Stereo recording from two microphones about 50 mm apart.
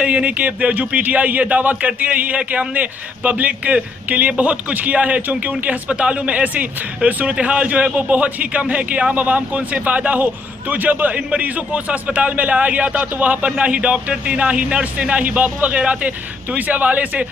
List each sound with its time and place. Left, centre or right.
0.0 s speech: right